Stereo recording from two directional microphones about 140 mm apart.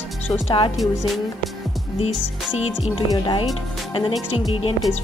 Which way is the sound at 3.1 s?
35° left (ahead or behind).